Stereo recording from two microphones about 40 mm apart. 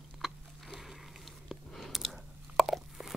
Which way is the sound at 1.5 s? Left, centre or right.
Centre.